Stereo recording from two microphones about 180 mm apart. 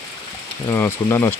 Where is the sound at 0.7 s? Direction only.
15° left (ahead or behind).